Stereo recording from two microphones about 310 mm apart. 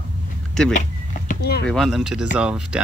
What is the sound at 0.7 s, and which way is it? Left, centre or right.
Speech, left.